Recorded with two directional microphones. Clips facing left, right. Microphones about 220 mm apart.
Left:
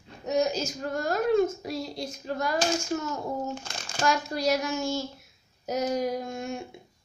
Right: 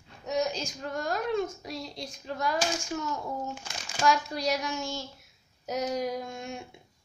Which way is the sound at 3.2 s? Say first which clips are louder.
Left 4 dB; 20° left (ahead or behind).